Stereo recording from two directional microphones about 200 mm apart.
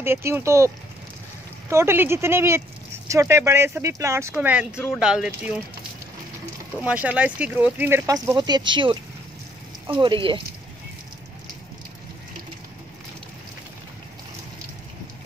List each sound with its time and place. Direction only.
0.0 s speech: 10° right (ahead or behind)
1.7 s speech: 15° right (ahead or behind)
6.8 s speech: 5° right (ahead or behind)
8.4 s speech: 20° right (ahead or behind)
9.9 s speech: 25° right (ahead or behind)